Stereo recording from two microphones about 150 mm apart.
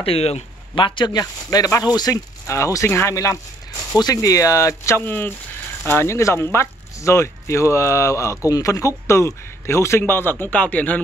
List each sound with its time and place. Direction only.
0.0 s speech: 40° left (ahead or behind); by 11.0 s 10° left (ahead or behind)